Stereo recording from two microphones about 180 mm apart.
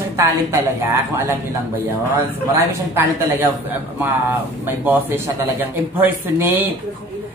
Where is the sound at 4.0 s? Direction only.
10° right (ahead or behind).